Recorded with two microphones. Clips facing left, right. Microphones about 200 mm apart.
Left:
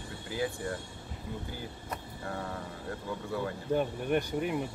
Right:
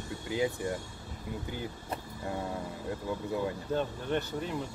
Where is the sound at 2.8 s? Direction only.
20° right (ahead or behind).